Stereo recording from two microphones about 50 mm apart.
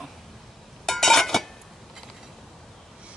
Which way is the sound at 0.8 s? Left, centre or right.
Centre.